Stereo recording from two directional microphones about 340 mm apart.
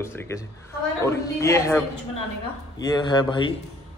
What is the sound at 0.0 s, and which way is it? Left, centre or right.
A man's voice, centre.